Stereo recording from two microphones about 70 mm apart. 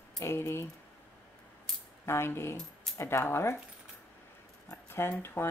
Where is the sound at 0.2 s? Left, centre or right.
Left.